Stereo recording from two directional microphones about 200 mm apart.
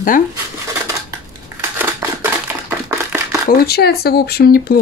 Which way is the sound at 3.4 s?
50° left (ahead or behind).